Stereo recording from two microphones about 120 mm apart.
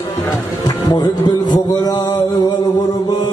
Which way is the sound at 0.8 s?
35° left (ahead or behind).